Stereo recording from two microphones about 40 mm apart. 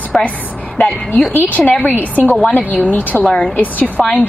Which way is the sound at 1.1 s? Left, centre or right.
Left.